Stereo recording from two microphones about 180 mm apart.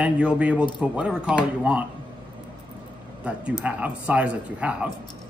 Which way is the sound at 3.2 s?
10° right (ahead or behind).